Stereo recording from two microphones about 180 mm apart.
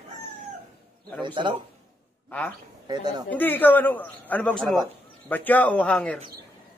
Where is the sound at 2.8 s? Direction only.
25° right (ahead or behind).